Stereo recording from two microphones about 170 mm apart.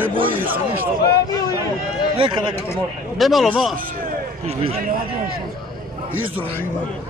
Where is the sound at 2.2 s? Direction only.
30° right (ahead or behind).